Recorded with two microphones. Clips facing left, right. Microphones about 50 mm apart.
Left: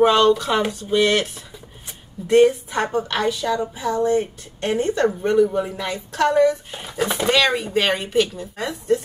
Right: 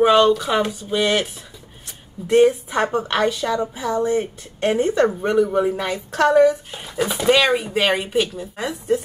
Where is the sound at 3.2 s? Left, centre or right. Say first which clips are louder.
Right 2 dB; right.